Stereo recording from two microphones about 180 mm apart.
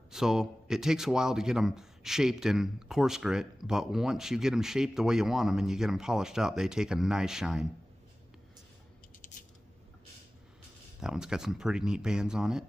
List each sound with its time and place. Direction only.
0.1 s speech: 5° right (ahead or behind)
9.2 s a sound: 45° left (ahead or behind)
11.0 s speech: 5° right (ahead or behind)